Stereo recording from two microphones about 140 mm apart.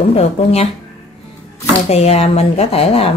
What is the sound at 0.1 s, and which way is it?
Speech, 45° left (ahead or behind).